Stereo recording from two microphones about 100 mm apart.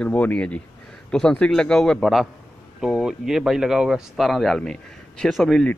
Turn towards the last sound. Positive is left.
turn(degrees=5)  # may be behind; listen again after turning